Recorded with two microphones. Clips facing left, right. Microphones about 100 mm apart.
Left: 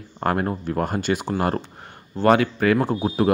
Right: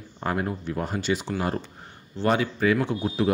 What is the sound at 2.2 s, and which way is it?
Speech, 65° left (ahead or behind).